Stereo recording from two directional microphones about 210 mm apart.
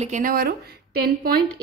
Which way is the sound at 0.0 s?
40° right (ahead or behind).